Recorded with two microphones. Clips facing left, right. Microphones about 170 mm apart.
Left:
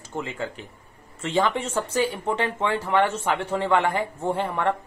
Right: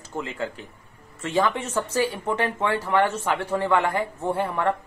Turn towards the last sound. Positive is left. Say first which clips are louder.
# even
turn(degrees=20)  # may be behind; listen again after turning